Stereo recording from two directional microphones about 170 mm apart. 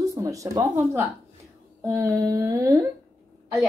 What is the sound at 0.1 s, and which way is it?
Speech, 20° right (ahead or behind).